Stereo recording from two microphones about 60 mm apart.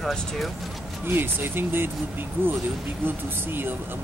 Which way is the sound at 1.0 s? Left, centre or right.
Right.